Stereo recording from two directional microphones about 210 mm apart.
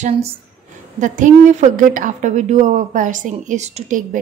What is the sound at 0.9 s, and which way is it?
A woman's voice, 35° right (ahead or behind).